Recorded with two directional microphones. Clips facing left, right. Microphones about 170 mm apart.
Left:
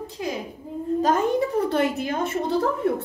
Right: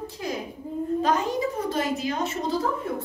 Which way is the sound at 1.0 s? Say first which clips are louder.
Left 5 dB; 50° left (ahead or behind).